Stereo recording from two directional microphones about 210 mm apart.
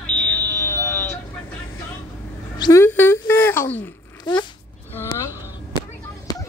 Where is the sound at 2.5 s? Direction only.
15° left (ahead or behind).